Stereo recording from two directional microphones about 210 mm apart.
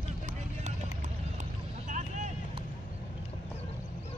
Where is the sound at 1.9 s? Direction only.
35° right (ahead or behind).